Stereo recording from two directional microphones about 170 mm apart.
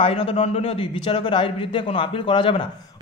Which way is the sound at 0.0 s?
35° left (ahead or behind).